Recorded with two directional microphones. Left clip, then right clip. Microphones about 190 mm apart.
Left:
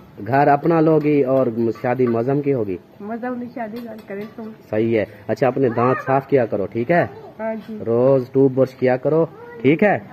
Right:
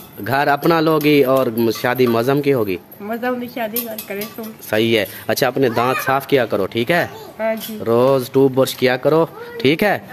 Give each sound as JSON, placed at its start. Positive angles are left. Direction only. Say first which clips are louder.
{"t": 0.2, "sound": "speech", "louder": "left 1 dB", "side_deg": -15}
{"t": 4.6, "sound": "speech", "louder": "right 3 dB", "side_deg": -15}
{"t": 9.6, "sound": "speech", "louder": "even", "side_deg": -30}